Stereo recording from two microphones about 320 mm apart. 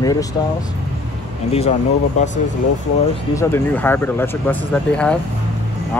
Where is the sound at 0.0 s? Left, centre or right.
Centre.